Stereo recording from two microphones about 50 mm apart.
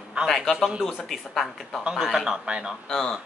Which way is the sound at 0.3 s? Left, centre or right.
Centre.